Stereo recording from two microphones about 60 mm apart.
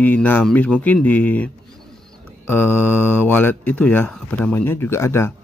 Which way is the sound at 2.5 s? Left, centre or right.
Left.